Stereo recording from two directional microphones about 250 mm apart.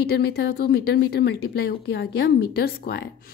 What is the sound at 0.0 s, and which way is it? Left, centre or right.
Speech, left.